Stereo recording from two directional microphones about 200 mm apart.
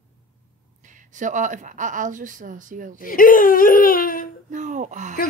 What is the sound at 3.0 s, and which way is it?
Speech, 45° left (ahead or behind).